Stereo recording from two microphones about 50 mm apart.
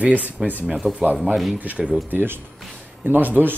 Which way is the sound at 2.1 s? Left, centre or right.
Right.